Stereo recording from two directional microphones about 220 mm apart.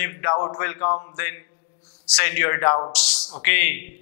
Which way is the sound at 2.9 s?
10° left (ahead or behind).